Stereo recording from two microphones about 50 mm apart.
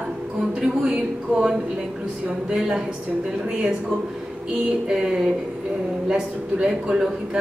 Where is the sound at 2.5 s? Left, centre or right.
Centre.